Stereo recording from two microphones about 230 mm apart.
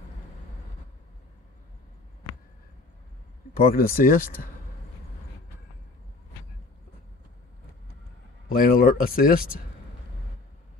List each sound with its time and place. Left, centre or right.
3.6 s speech: left
8.5 s speech: left